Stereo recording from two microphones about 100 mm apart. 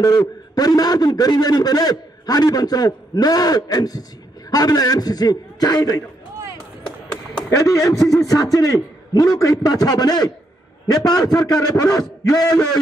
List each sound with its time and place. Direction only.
0.6 s a man's voice: 40° left (ahead or behind)
7.4 s a man's voice: 35° left (ahead or behind)